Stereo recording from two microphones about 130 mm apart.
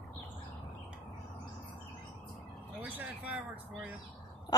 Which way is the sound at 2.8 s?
10° right (ahead or behind).